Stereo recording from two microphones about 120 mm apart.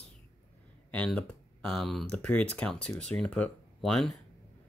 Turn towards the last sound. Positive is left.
turn(degrees=0)  # may be behind; listen again after turning